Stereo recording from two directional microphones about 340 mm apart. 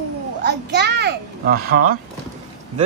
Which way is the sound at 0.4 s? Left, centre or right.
Right.